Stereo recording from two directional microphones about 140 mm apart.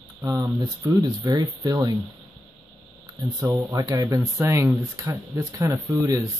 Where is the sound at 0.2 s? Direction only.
20° right (ahead or behind).